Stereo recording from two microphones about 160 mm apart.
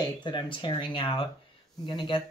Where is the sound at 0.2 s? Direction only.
30° left (ahead or behind).